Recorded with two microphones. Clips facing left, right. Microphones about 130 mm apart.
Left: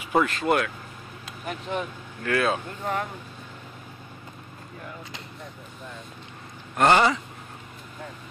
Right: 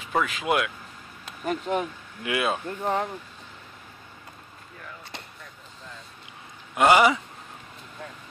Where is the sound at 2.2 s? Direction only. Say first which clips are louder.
Left 2 dB; 10° right (ahead or behind).